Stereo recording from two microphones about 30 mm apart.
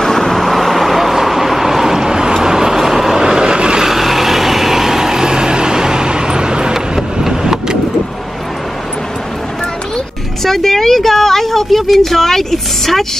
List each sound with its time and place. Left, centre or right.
0.0 s vehicle: centre; by 3.8 s right
3.8 s vehicle: centre
10.4 s speech: centre